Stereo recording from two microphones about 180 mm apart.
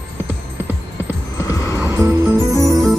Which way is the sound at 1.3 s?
20° left (ahead or behind).